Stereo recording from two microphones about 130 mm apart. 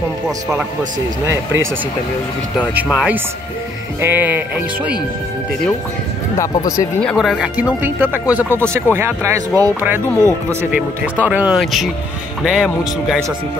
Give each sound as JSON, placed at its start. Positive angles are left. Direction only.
{"t": 1.2, "sound": "speech", "side_deg": -20}
{"t": 2.7, "sound": "speech", "side_deg": -10}
{"t": 6.3, "sound": "speech", "side_deg": 25}
{"t": 7.0, "sound": "speech", "side_deg": 5}
{"t": 7.8, "sound": "speech", "side_deg": -15}
{"t": 8.5, "sound": "speech", "side_deg": 10}
{"t": 8.9, "sound": "speech", "side_deg": -20}